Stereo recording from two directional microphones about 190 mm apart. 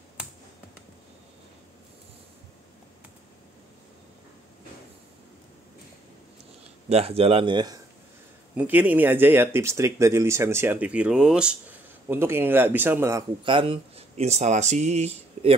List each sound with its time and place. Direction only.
6.9 s speech: 30° right (ahead or behind)
8.5 s speech: 10° right (ahead or behind)
13.4 s speech: 25° right (ahead or behind)